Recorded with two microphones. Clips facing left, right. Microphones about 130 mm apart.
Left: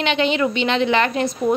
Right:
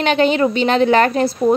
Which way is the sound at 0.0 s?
45° right (ahead or behind).